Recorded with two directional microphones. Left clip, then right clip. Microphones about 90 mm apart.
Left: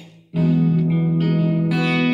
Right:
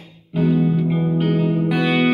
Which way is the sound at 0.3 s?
30° right (ahead or behind).